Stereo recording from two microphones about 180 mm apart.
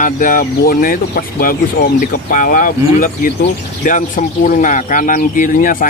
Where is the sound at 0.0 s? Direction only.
50° left (ahead or behind).